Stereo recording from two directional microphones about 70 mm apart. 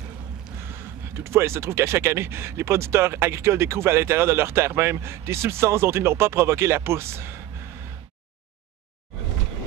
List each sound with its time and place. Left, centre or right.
0.6 s speech: right